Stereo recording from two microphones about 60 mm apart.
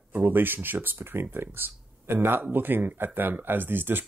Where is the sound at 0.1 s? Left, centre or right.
Right.